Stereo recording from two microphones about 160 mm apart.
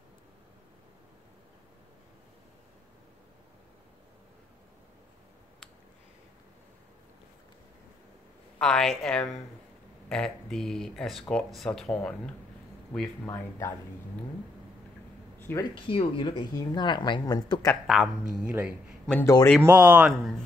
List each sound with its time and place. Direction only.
8.5 s speech: 5° left (ahead or behind)
15.3 s a sound: 10° left (ahead or behind)
15.7 s speech: 30° left (ahead or behind)
17.8 s speech: 5° right (ahead or behind)
19.0 s a man's voice: 10° left (ahead or behind)
19.6 s speech: 10° right (ahead or behind)
20.1 s speech: centre (ahead or behind)